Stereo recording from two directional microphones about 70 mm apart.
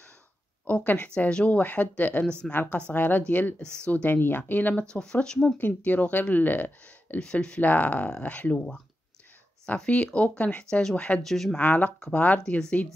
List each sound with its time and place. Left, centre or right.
0.7 s speech: left
4.9 s speech: centre
5.6 s speech: left
7.2 s speech: centre
11.5 s speech: left